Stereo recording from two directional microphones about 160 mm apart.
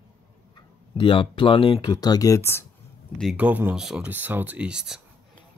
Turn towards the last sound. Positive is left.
turn(degrees=-5)  # may be behind; listen again after turning